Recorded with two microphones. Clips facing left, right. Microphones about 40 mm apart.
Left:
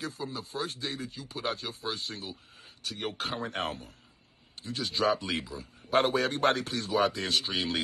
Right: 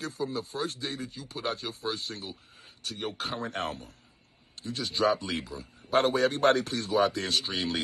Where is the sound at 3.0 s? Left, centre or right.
Left.